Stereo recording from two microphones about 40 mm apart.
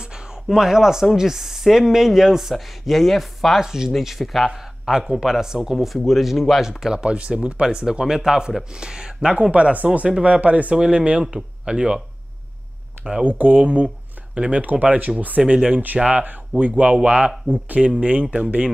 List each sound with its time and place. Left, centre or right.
0.0 s a sound: centre
1.1 s speech: centre
2.5 s speech: centre
3.6 s speech: centre
4.0 s speech: centre
6.8 s speech: centre
7.1 s speech: right
7.6 s speech: centre
9.3 s speech: right
10.8 s speech: right
13.2 s speech: right
14.7 s speech: right
15.4 s speech: right
16.1 s speech: right